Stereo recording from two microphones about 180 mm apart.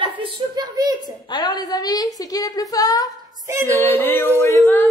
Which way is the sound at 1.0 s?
25° left (ahead or behind).